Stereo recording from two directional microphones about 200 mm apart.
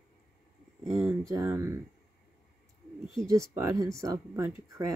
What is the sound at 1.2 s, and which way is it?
Speech, 15° right (ahead or behind).